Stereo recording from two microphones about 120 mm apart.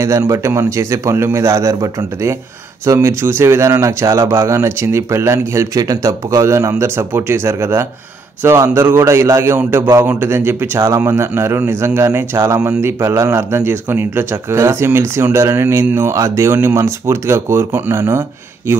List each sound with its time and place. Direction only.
0.3 s a man's voice: 20° right (ahead or behind)